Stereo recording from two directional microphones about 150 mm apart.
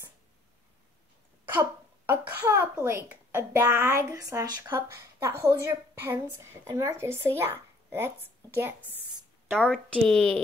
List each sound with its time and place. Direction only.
1.4 s a child's voice: 15° right (ahead or behind)
9.5 s a woman's voice: 5° left (ahead or behind)